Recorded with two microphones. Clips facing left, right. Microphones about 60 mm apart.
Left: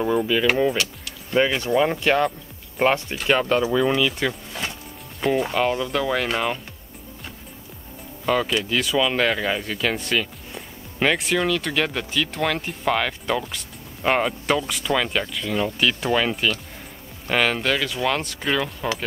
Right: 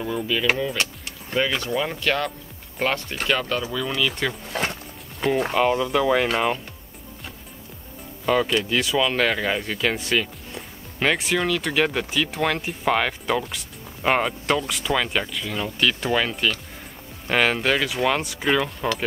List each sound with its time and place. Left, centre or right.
0.0 s speech: centre
4.0 s speech: centre
4.5 s a sound: right
5.5 s speech: centre
8.3 s speech: centre
17.3 s speech: centre